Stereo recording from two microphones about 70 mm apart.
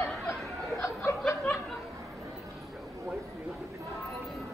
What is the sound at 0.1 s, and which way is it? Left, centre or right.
Chatter, centre.